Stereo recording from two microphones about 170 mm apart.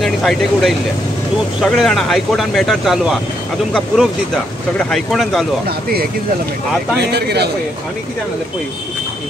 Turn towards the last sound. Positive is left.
turn(degrees=-75)  # may be behind; listen again after turning